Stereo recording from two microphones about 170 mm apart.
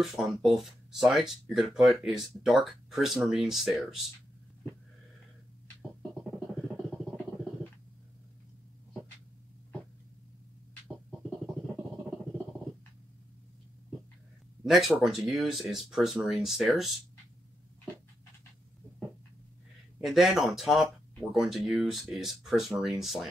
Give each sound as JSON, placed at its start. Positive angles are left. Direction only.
{"t": 0.0, "sound": "speech", "side_deg": 0}
{"t": 14.6, "sound": "speech", "side_deg": 0}
{"t": 20.0, "sound": "speech", "side_deg": 0}